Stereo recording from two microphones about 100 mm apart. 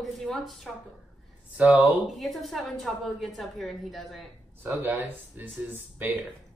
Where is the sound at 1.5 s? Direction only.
15° right (ahead or behind).